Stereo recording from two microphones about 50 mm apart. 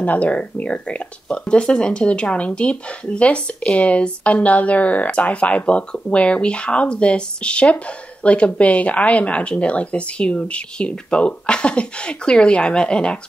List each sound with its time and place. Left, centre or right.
0.0 s speech: left